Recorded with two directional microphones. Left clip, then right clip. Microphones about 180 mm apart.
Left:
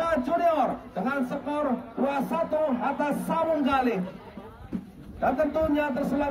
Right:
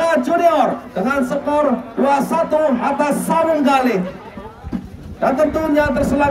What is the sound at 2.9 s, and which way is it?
A man's voice, 35° right (ahead or behind).